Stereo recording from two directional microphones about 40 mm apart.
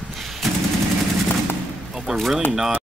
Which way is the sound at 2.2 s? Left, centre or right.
Centre.